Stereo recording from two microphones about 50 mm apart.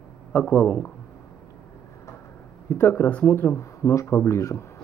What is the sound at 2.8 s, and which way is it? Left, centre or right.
Speech, left.